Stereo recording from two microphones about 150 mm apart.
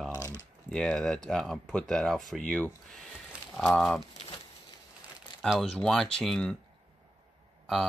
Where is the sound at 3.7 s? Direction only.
Centre (ahead or behind).